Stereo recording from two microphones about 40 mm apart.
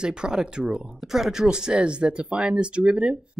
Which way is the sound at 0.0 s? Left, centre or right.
Centre.